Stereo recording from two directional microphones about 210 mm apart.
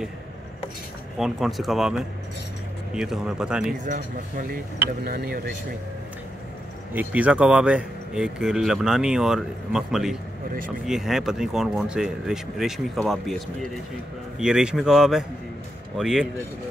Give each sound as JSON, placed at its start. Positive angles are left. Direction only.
{"t": 1.1, "sound": "speech", "side_deg": 0}
{"t": 3.8, "sound": "speech", "side_deg": -40}
{"t": 6.9, "sound": "speech", "side_deg": -10}